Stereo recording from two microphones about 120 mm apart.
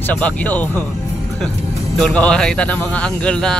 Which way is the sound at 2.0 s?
10° left (ahead or behind).